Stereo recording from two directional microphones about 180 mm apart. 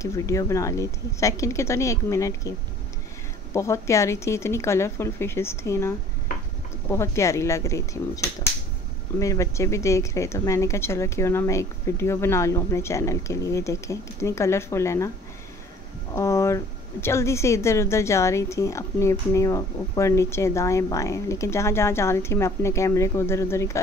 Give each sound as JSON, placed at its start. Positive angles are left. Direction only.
{"t": 0.0, "sound": "speech", "side_deg": 15}
{"t": 3.5, "sound": "speech", "side_deg": 15}
{"t": 16.1, "sound": "speech", "side_deg": 15}